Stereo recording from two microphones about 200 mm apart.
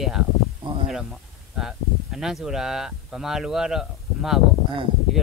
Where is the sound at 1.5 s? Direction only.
Centre (ahead or behind).